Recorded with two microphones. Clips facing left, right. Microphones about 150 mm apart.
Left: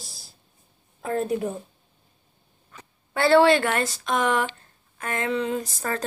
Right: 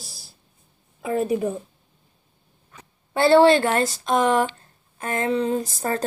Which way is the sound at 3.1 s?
30° right (ahead or behind).